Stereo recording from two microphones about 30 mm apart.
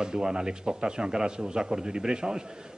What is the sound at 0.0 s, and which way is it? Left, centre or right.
A man's voice, right.